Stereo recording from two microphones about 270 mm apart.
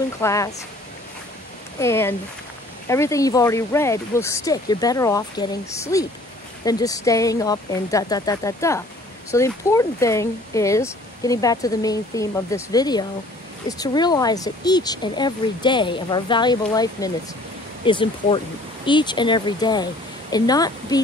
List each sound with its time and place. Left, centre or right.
0.2 s speech: centre
1.8 s speech: centre